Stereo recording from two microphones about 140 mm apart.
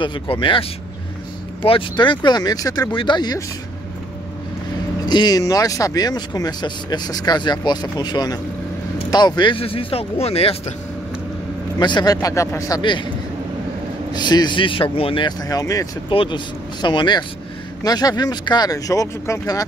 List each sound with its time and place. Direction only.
0.0 s speech: 35° left (ahead or behind)
5.0 s speech: 30° left (ahead or behind); by 10.6 s 45° left (ahead or behind)
11.8 s speech: 30° left (ahead or behind)
14.1 s speech: 30° left (ahead or behind)
16.1 s speech: 35° left (ahead or behind)